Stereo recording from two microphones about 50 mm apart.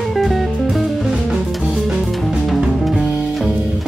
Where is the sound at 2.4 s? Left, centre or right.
Centre.